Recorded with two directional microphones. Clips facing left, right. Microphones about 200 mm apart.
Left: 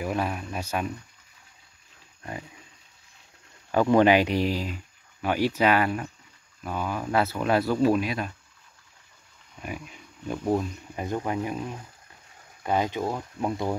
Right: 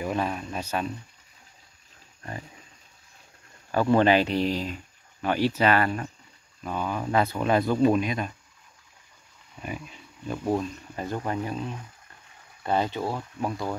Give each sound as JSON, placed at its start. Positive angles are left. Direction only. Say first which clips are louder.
{"t": 0.0, "sound": "speech", "louder": "even", "side_deg": 5}
{"t": 3.7, "sound": "speech", "louder": "left 1 dB", "side_deg": 15}
{"t": 9.6, "sound": "speech", "louder": "right 1 dB", "side_deg": 5}